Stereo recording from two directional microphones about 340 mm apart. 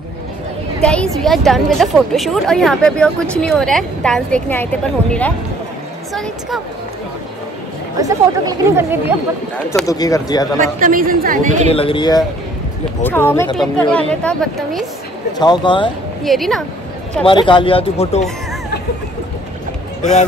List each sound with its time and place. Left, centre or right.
0.8 s a woman's voice: centre
8.0 s speech: centre
9.7 s speech: centre
10.6 s a man's voice: right
11.7 s a woman's voice: centre
15.3 s speech: centre
16.3 s a woman's voice: centre
17.2 s speech: centre
20.0 s speech: left